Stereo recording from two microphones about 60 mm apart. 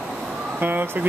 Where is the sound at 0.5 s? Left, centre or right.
Right.